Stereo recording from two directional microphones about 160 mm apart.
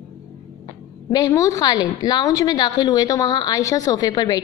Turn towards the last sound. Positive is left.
turn(degrees=25)  # may be behind; listen again after turning